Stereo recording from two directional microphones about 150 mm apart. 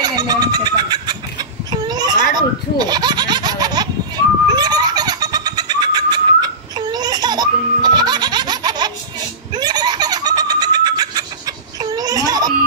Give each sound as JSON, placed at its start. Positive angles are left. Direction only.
{"t": 0.0, "sound": "speech", "side_deg": -25}
{"t": 1.7, "sound": "baby laughter", "side_deg": -25}
{"t": 9.5, "sound": "giggle", "side_deg": -25}